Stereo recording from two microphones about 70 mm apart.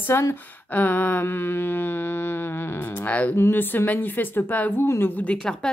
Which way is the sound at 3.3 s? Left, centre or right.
Left.